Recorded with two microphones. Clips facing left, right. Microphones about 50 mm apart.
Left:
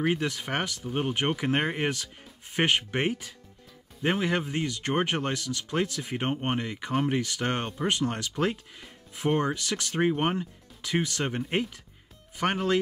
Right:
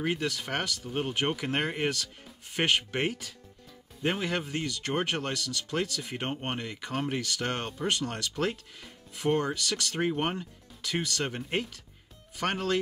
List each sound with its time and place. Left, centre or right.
0.0 s speech: centre